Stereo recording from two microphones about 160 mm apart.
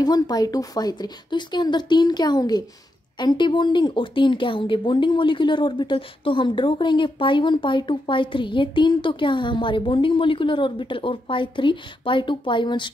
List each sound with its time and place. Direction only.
0.0 s a woman's voice: 25° left (ahead or behind)